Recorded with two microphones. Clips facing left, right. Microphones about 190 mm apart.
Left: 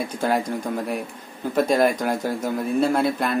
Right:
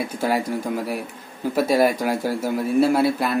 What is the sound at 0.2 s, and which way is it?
Speech, 5° right (ahead or behind).